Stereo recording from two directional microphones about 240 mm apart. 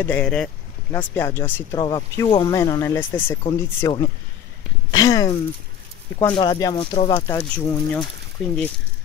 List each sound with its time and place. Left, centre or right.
0.0 s speech: centre
7.3 s speech: centre